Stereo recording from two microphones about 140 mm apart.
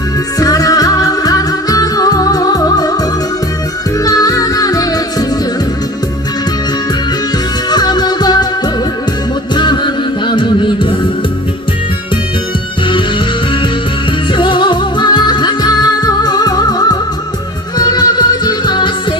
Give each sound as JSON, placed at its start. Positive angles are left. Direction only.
{"t": 0.4, "sound": "music", "side_deg": 25}
{"t": 4.0, "sound": "music", "side_deg": 25}
{"t": 7.7, "sound": "music", "side_deg": 30}
{"t": 10.2, "sound": "music", "side_deg": 35}
{"t": 14.3, "sound": "music", "side_deg": 35}